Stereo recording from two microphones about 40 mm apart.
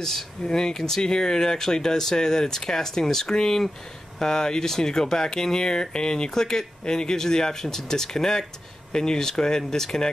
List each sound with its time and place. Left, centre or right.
0.5 s speech: centre